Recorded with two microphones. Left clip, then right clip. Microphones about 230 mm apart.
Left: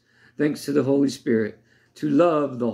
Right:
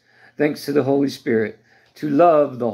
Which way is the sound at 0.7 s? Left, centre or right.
Right.